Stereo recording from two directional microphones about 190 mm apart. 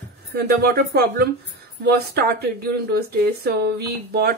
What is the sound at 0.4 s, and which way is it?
Speech, 55° right (ahead or behind).